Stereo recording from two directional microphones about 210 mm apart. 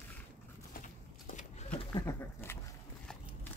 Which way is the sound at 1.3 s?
35° left (ahead or behind).